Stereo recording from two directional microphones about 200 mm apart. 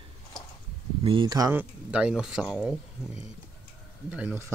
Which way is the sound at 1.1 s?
20° right (ahead or behind).